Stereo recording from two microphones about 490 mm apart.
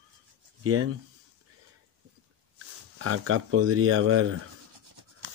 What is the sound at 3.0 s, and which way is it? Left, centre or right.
Speech, right.